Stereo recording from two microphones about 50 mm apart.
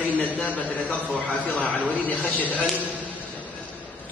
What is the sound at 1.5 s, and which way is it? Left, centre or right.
A man's voice, left.